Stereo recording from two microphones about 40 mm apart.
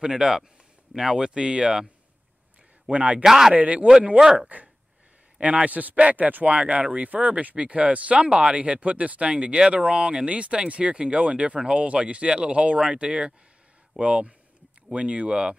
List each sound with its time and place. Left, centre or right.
0.1 s speech: centre
2.9 s speech: right
3.3 s speech: centre
3.5 s speech: right
3.8 s speech: right
5.4 s speech: right
8.3 s speech: right